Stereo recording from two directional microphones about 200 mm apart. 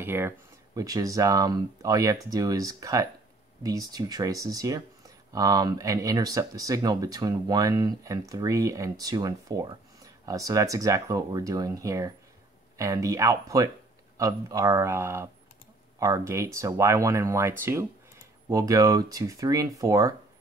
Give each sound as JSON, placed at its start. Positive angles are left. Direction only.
{"t": 0.0, "sound": "speech", "side_deg": -10}